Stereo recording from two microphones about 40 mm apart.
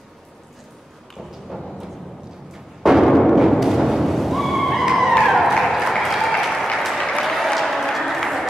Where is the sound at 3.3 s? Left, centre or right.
Centre.